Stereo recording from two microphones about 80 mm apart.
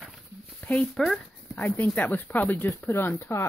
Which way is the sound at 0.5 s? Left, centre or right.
Centre.